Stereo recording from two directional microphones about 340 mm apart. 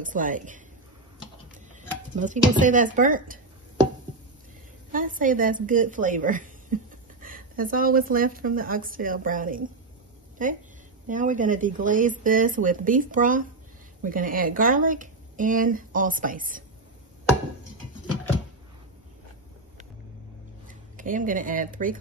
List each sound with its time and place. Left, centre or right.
0.0 s speech: right
1.8 s a sound: right
2.6 s speech: right
4.9 s a woman's voice: right
20.6 s speech: right